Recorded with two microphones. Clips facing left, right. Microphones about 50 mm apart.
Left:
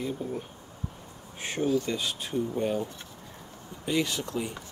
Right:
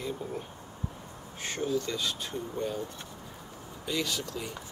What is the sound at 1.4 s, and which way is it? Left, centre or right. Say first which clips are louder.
Speech: left 4 dB; centre.